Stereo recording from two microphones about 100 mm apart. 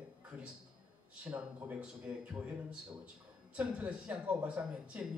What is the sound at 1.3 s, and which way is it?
Speech, 20° right (ahead or behind).